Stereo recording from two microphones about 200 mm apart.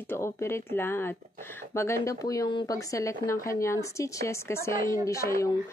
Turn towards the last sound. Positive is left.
turn(degrees=15)  # may be behind; listen again after turning